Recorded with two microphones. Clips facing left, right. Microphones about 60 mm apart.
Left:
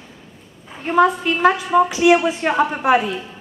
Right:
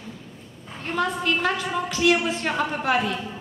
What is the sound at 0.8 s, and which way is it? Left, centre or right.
A woman's voice, centre.